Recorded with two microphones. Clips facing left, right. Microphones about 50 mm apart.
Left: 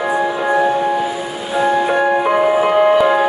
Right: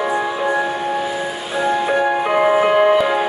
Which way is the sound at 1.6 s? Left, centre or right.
Centre.